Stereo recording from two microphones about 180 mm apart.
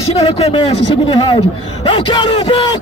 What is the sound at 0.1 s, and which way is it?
Speech, 35° left (ahead or behind).